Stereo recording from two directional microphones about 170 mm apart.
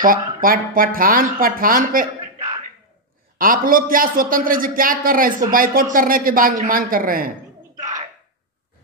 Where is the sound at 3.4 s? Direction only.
55° right (ahead or behind).